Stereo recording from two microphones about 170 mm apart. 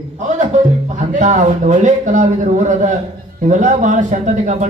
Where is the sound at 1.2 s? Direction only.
45° right (ahead or behind).